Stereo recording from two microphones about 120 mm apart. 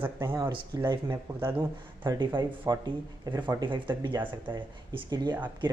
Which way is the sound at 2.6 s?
25° right (ahead or behind).